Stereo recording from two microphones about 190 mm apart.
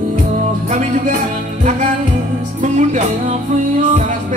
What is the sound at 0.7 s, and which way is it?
Music, 40° right (ahead or behind).